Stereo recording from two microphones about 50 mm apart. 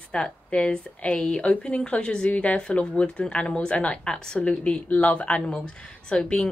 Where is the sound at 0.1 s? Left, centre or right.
Centre.